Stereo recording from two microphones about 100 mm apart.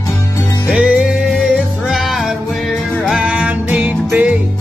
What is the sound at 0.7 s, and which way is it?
Music, 10° right (ahead or behind).